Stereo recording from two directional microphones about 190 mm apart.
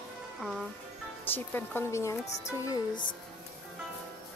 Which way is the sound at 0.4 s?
Centre (ahead or behind).